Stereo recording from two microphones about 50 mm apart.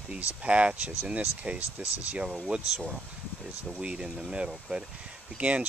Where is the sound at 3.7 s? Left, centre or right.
Centre.